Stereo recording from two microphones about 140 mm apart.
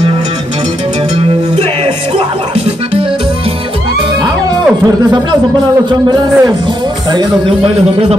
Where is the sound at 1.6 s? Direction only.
50° right (ahead or behind).